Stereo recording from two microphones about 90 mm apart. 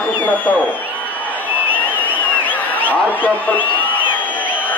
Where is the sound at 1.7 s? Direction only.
20° left (ahead or behind).